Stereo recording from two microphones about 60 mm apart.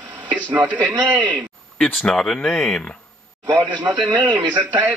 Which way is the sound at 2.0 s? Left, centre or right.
Centre.